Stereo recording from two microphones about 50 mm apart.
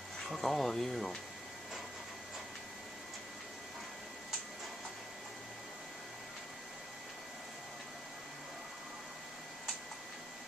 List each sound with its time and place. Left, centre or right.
0.3 s speech: centre